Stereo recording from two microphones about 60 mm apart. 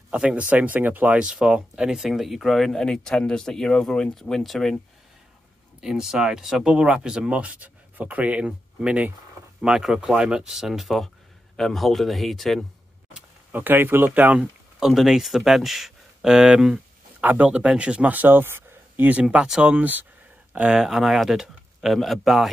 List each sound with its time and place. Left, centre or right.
0.1 s speech: centre
1.2 s speech: centre
2.0 s speech: centre
5.8 s speech: centre
13.5 s speech: right
14.4 s speech: centre
17.2 s speech: right
18.1 s speech: right
19.3 s speech: centre
19.6 s speech: right
20.5 s speech: centre